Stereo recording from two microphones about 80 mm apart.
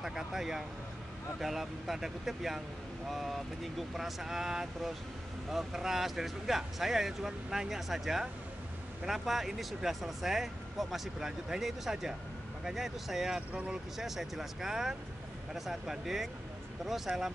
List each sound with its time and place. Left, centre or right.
0.0 s speech: centre
13.5 s speech: centre
13.9 s speech: centre